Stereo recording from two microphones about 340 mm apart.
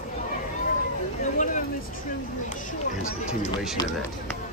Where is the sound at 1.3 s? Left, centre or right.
Left.